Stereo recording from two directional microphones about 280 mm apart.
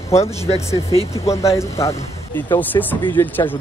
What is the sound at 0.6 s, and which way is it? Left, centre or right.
Speech, centre.